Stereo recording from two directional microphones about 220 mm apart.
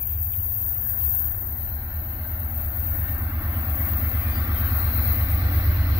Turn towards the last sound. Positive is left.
turn(degrees=-15)  # may be behind; listen again after turning